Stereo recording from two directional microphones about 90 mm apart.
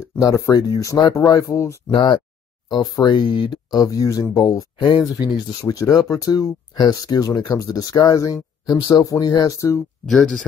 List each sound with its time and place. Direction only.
0.2 s speech: 40° left (ahead or behind)
1.9 s speech: 65° left (ahead or behind)
2.7 s speech: 55° left (ahead or behind)
3.8 s speech: 40° left (ahead or behind)